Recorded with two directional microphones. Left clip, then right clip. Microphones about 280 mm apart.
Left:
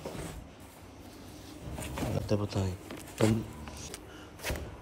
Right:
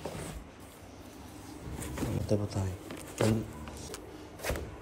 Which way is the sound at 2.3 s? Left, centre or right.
Centre.